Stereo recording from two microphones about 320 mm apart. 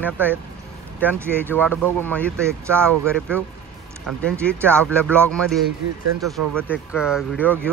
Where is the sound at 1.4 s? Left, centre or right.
Centre.